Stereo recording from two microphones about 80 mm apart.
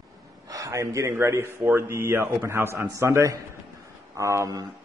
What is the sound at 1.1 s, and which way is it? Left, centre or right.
A man's voice, right.